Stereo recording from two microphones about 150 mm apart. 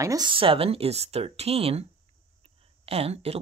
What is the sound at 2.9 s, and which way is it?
Speech, 40° right (ahead or behind).